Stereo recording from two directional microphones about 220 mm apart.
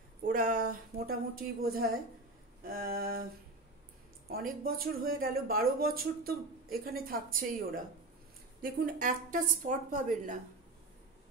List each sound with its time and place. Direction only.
0.2 s speech: 40° right (ahead or behind)
4.3 s speech: 40° right (ahead or behind)